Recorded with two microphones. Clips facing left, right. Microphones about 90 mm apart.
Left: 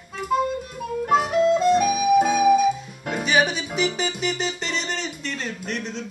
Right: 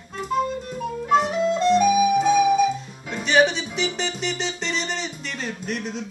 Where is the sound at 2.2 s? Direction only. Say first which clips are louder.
Even; 55° left (ahead or behind).